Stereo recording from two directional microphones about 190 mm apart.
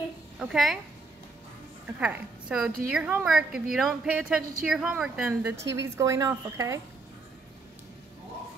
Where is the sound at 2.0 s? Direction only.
5° right (ahead or behind).